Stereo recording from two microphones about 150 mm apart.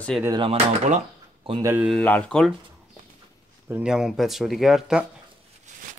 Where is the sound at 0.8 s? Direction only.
50° right (ahead or behind).